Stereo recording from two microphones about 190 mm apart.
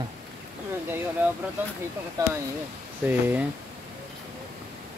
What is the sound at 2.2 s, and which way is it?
Speech, 20° right (ahead or behind).